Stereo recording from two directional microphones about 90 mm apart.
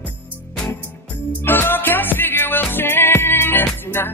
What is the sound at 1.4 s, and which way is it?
Music, 25° left (ahead or behind).